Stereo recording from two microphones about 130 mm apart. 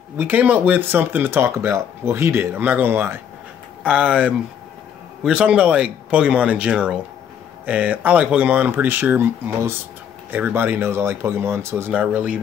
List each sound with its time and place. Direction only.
0.2 s speech: 10° right (ahead or behind)
10.3 s speech: 15° right (ahead or behind)